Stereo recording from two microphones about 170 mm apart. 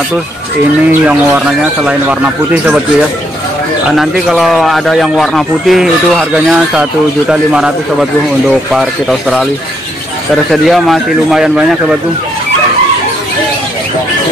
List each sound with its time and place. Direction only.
1.0 s speech: 5° right (ahead or behind)
3.9 s a man's voice: centre (ahead or behind)
10.3 s a man's voice: centre (ahead or behind)